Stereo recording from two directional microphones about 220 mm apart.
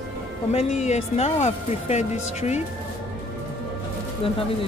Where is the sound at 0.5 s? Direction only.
30° left (ahead or behind).